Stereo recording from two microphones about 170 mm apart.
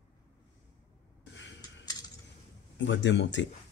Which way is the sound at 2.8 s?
90° left.